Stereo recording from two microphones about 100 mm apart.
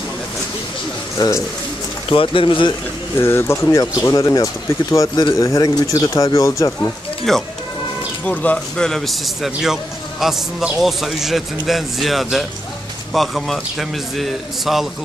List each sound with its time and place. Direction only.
1.1 s speech: 35° left (ahead or behind)
2.0 s speech: 60° left (ahead or behind)
3.2 s speech: 25° left (ahead or behind)
7.3 s a man's voice: centre (ahead or behind)
8.3 s a man's voice: 15° left (ahead or behind); by 14.9 s centre (ahead or behind)